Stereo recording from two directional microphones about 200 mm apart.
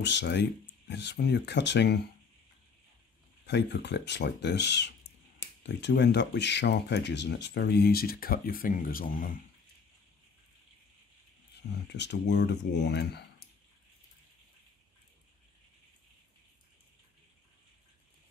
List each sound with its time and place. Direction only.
0.0 s speech: 60° left (ahead or behind)
3.4 s speech: 60° left (ahead or behind); by 9.3 s 45° left (ahead or behind)
11.9 s speech: 60° left (ahead or behind)